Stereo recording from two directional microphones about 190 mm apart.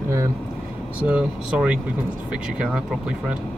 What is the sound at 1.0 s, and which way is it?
Speech, 5° right (ahead or behind).